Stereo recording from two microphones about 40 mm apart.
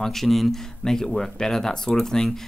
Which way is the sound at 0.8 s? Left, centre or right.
Centre.